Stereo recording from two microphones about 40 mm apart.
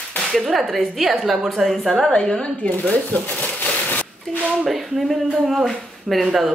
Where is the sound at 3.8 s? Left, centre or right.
Left.